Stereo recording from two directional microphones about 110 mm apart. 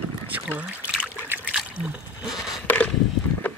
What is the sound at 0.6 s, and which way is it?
Trickle, 15° right (ahead or behind).